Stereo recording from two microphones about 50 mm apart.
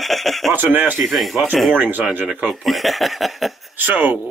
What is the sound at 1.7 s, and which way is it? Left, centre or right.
Speech, right.